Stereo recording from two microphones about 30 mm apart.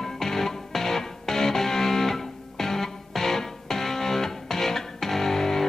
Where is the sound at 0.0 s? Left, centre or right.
Centre.